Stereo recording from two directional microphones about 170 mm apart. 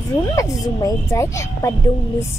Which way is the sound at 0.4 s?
20° left (ahead or behind).